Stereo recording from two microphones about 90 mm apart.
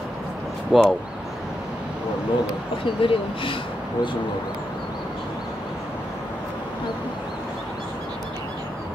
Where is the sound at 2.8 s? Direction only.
75° left (ahead or behind).